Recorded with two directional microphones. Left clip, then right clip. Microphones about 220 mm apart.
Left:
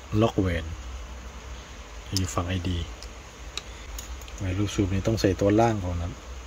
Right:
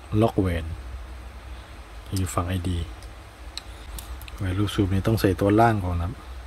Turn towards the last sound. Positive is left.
turn(degrees=-15)  # may be behind; listen again after turning